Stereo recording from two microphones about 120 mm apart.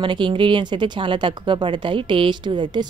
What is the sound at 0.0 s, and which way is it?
Speech, 45° right (ahead or behind).